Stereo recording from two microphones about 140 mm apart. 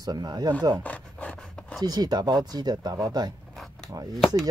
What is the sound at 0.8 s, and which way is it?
Filing, 10° left (ahead or behind).